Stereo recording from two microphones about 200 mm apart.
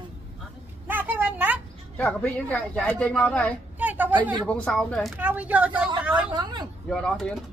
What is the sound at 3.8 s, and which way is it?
Speech, 10° right (ahead or behind).